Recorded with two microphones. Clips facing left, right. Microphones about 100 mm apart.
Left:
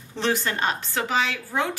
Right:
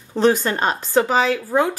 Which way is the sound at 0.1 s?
40° right (ahead or behind).